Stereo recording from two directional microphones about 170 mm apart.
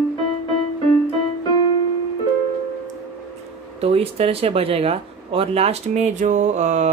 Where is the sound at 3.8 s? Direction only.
35° right (ahead or behind).